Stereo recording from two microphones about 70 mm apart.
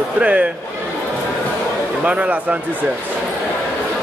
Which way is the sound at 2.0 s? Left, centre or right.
Centre.